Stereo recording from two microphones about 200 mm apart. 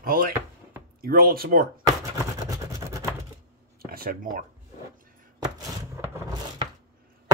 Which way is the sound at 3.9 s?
45° right (ahead or behind).